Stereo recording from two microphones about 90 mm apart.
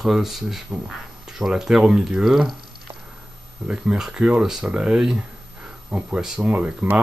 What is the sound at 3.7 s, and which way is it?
Speech, 10° right (ahead or behind).